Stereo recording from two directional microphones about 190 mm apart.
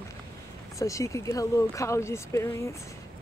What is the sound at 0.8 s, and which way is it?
Speech, 15° left (ahead or behind).